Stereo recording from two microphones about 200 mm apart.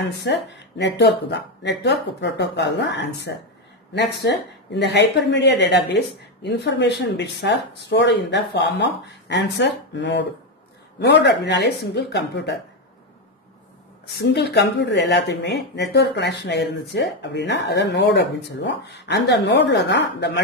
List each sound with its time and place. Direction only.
0.0 s speech: 60° left (ahead or behind)
14.1 s speech: 55° left (ahead or behind)